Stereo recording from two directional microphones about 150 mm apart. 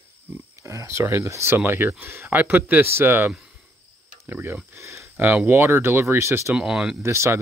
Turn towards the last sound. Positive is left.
turn(degrees=-15)  # may be behind; listen again after turning